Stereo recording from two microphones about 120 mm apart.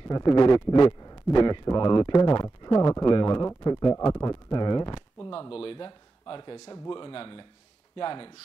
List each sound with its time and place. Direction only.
0.1 s a man's voice: 40° left (ahead or behind)
5.5 s a man's voice: 50° left (ahead or behind)